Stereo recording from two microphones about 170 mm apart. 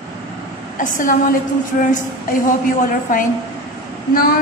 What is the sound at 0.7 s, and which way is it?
Speech, 50° left (ahead or behind).